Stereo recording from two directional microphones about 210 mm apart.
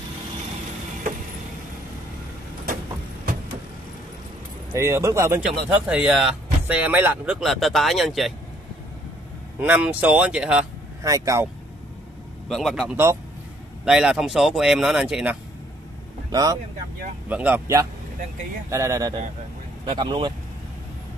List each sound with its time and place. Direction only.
4.7 s speech: 15° right (ahead or behind)
9.6 s speech: 5° right (ahead or behind)
11.0 s speech: 15° right (ahead or behind)
12.4 s speech: centre (ahead or behind)
16.3 s speech: 20° right (ahead or behind)
17.3 s speech: 10° right (ahead or behind)